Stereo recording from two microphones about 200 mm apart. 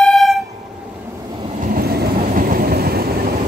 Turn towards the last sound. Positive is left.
turn(degrees=-50)  # may be behind; listen again after turning